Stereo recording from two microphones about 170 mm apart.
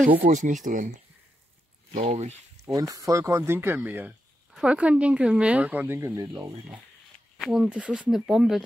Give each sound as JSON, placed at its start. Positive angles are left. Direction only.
{"t": 0.2, "sound": "speech", "side_deg": -50}
{"t": 2.0, "sound": "speech", "side_deg": -40}
{"t": 2.6, "sound": "speech", "side_deg": -20}
{"t": 7.3, "sound": "speech", "side_deg": 0}